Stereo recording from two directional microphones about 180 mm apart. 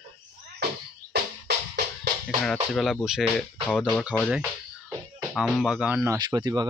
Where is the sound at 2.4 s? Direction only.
Centre (ahead or behind).